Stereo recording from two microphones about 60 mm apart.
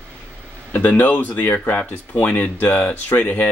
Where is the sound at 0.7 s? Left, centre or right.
Left.